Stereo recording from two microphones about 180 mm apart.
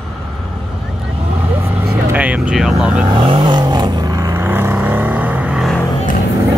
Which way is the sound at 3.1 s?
30° right (ahead or behind).